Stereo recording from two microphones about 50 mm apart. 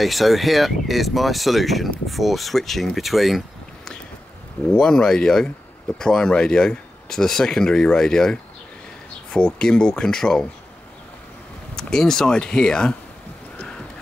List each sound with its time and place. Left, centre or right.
0.0 s speech: centre
4.7 s speech: centre
11.7 s speech: centre
13.6 s a sound: centre